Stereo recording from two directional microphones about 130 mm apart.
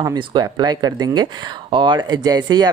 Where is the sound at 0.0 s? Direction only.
35° right (ahead or behind).